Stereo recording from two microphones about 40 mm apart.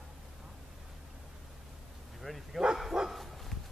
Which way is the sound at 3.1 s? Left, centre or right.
Centre.